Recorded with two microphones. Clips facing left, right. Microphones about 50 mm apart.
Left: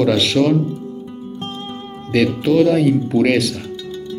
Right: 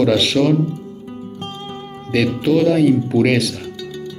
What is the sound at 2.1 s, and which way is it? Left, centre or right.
Speech, centre.